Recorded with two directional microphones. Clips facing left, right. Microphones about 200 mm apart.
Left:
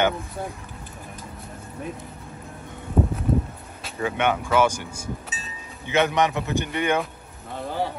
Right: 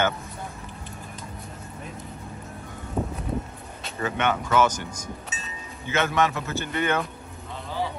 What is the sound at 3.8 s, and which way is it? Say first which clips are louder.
Speech: left 2 dB; 10° left (ahead or behind).